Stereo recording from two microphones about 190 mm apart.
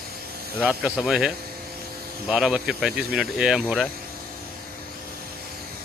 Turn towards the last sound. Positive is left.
turn(degrees=-5)  # may be behind; listen again after turning